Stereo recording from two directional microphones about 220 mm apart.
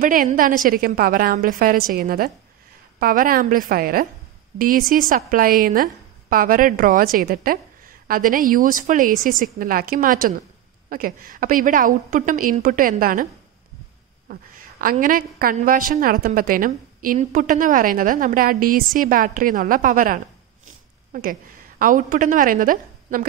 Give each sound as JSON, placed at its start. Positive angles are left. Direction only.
{"t": 0.0, "sound": "a woman's voice", "side_deg": -35}